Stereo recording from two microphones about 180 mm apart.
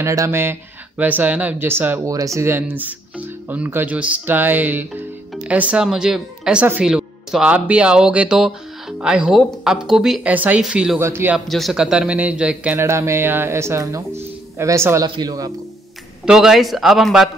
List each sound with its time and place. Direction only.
0.0 s a man's voice: 15° right (ahead or behind)
11.3 s a man's voice: centre (ahead or behind); by 15.5 s 20° right (ahead or behind)
16.3 s speech: centre (ahead or behind)